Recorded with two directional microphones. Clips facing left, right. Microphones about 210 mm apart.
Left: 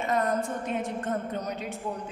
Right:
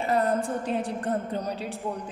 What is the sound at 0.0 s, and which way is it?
A woman's voice, 30° right (ahead or behind).